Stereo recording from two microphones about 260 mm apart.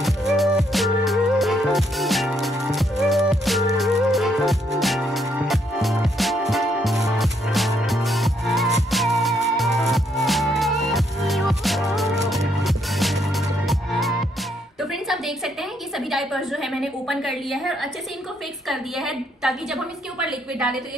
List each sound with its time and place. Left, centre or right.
0.0 s music: centre
16.0 s a sound: centre
18.7 s a woman's voice: centre